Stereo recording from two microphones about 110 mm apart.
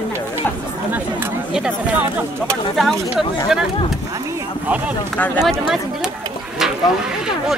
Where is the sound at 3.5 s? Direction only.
5° right (ahead or behind).